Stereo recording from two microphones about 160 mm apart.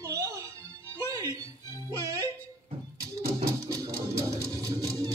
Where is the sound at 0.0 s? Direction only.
20° right (ahead or behind).